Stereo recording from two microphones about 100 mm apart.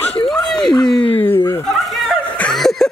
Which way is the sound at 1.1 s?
20° left (ahead or behind).